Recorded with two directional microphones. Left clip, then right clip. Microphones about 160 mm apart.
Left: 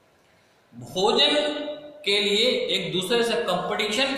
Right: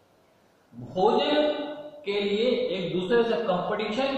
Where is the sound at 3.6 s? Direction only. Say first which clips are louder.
Left 3 dB; 15° left (ahead or behind).